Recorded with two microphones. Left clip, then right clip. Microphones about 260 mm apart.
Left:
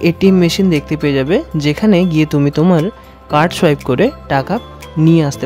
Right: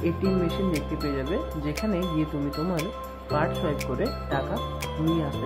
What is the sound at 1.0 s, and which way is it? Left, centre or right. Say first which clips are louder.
Speech: left 17 dB; left.